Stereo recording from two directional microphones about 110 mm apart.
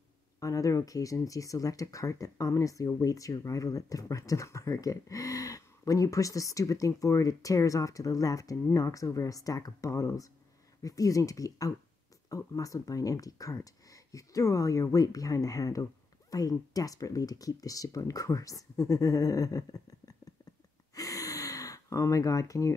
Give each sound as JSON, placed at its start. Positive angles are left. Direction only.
{"t": 0.4, "sound": "speech", "side_deg": 30}
{"t": 20.9, "sound": "gasp", "side_deg": 30}